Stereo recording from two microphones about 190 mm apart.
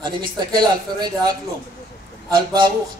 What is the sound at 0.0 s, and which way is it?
Speech, 25° right (ahead or behind).